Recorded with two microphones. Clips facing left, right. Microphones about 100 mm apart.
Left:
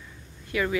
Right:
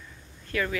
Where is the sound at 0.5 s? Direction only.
15° left (ahead or behind).